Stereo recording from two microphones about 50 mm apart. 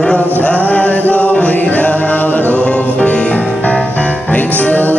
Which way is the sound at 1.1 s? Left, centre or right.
Left.